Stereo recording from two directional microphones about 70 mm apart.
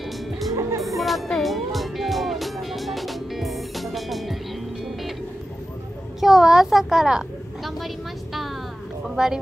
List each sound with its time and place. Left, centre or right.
0.5 s music: right
0.8 s music: centre
6.2 s a sound: centre
9.0 s speech: centre